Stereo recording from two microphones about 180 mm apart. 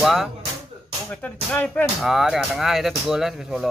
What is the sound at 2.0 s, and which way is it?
Speech, centre (ahead or behind).